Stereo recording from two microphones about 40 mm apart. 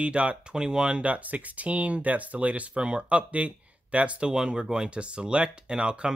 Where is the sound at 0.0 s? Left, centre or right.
Right.